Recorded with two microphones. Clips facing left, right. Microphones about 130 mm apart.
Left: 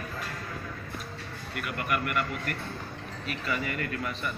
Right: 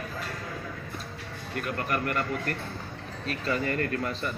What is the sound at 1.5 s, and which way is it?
A man's voice, 35° right (ahead or behind).